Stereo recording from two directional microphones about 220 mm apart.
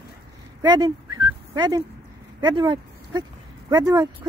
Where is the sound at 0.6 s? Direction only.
20° right (ahead or behind).